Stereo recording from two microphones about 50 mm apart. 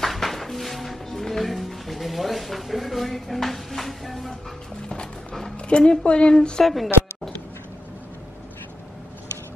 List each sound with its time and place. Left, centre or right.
0.0 s music: centre
5.7 s a woman's voice: left
6.6 s a woman's voice: centre